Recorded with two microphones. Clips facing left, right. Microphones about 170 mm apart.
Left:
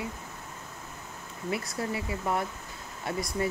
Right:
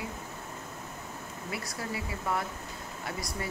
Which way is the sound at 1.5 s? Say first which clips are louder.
Left 5 dB; 25° left (ahead or behind).